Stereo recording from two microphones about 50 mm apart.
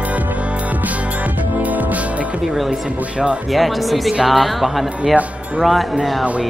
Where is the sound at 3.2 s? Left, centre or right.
Right.